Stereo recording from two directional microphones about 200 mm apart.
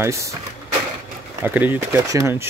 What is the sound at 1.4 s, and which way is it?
Speech, 10° right (ahead or behind).